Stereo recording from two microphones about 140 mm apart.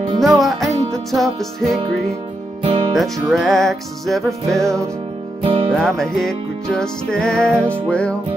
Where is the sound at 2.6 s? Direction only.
40° right (ahead or behind).